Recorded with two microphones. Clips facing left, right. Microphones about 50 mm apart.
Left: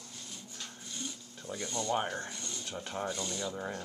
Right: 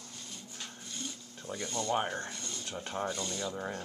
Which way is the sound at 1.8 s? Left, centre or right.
Centre.